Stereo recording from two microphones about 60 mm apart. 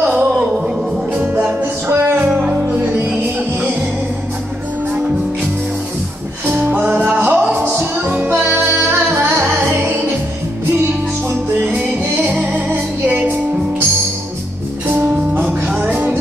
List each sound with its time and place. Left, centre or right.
0.0 s a sound: right
1.1 s music: right
1.9 s music: right
2.5 s music: right
6.4 s music: right
12.5 s music: right
15.8 s music: right